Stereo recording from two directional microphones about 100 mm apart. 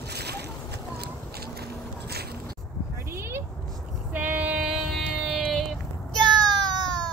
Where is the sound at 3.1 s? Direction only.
25° right (ahead or behind).